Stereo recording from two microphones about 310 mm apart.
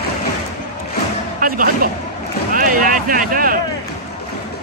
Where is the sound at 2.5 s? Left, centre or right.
Right.